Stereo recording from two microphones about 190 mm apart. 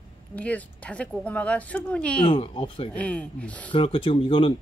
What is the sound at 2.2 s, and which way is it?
Speech, 25° left (ahead or behind).